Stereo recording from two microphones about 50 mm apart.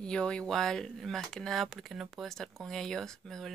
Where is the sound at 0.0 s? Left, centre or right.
Centre.